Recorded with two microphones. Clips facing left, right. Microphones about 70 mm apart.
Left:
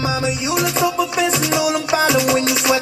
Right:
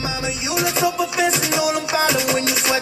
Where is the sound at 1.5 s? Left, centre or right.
Right.